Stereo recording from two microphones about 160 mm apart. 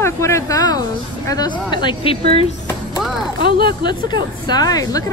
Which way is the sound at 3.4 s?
30° left (ahead or behind).